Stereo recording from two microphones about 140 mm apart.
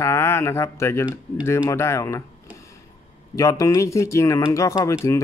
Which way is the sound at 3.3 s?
20° left (ahead or behind).